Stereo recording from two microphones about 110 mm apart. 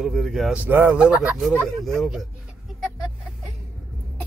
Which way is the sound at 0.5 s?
15° right (ahead or behind).